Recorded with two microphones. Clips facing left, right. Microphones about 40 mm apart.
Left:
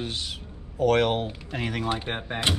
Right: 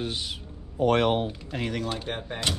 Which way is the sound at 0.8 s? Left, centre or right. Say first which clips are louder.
Even; centre.